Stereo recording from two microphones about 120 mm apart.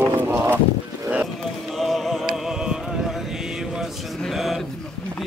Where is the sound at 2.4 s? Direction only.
5° right (ahead or behind).